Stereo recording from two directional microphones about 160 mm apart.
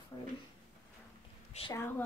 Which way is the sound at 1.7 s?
15° left (ahead or behind).